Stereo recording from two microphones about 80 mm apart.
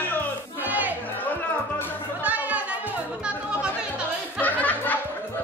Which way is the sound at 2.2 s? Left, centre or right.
Centre.